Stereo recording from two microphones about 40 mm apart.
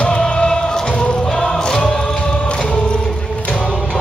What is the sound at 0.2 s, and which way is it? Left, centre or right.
Music, left.